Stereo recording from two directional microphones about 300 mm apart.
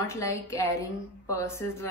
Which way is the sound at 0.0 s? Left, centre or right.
Centre.